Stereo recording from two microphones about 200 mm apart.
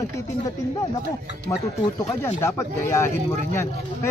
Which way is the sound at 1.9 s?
15° left (ahead or behind).